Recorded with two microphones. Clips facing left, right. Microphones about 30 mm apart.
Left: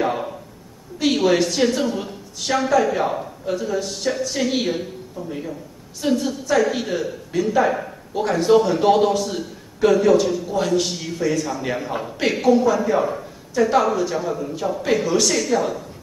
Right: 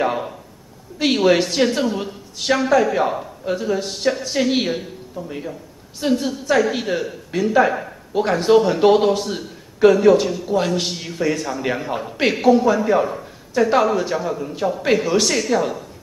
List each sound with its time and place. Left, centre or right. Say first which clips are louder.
0.9 s a man's voice: right 2 dB; right
2.0 s a woman's voice: right 2 dB; right
2.9 s a woman's voice: right 2 dB; centre
3.4 s a man's voice: right 2 dB; right
5.9 s a man's voice: right 1 dB; right
6.6 s a woman's voice: right 1 dB; centre